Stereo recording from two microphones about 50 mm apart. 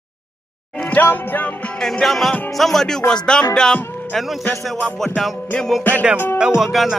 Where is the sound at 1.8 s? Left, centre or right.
Centre.